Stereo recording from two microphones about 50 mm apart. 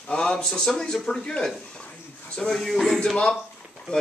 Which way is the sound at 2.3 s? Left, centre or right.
Centre.